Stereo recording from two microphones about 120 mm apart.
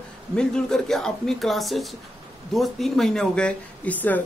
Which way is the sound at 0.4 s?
5° left (ahead or behind).